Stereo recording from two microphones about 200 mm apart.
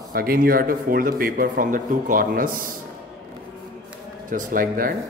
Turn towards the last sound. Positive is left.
turn(degrees=-45)  # may be behind; listen again after turning